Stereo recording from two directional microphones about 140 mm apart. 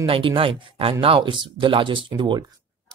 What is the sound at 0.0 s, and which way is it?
Speech, 40° right (ahead or behind).